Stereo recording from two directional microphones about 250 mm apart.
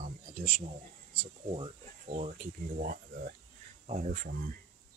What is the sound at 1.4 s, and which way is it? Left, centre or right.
Speech, right.